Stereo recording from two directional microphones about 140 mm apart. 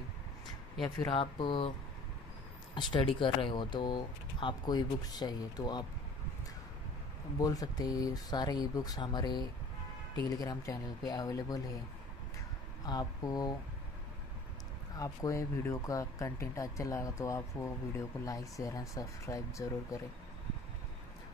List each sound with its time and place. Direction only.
0.9 s speech: 40° left (ahead or behind)
2.7 s speech: 35° left (ahead or behind)
7.3 s speech: 25° left (ahead or behind)
12.8 s speech: 30° left (ahead or behind)
15.0 s speech: 20° left (ahead or behind)